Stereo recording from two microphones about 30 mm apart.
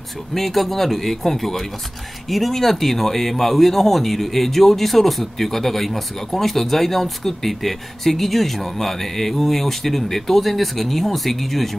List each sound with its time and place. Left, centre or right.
0.3 s speech: centre